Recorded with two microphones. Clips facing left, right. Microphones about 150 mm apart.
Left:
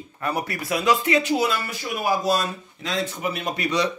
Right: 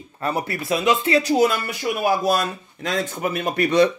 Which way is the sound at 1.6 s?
60° right (ahead or behind).